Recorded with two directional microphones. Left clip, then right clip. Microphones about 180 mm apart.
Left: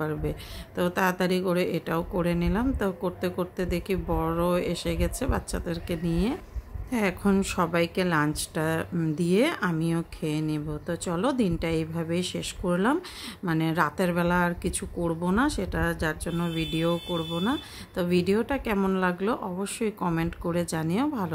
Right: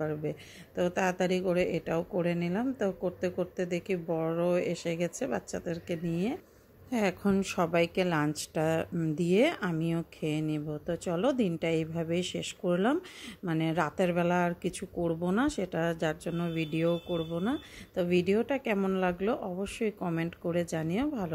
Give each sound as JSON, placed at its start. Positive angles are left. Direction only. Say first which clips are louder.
{"t": 0.0, "sound": "speech", "louder": "left 3 dB", "side_deg": -10}